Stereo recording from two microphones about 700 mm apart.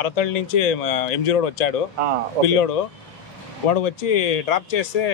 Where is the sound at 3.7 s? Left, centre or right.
Left.